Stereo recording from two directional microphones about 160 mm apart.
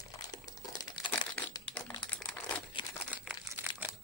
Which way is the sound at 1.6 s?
5° left (ahead or behind).